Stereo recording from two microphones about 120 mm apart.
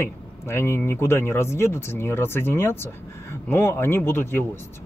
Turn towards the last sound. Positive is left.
turn(degrees=20)  # may be behind; listen again after turning